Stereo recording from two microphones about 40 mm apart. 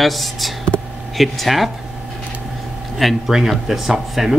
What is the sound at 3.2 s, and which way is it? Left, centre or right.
Speech, centre.